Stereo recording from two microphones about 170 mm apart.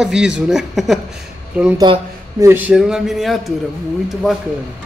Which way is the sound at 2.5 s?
10° right (ahead or behind).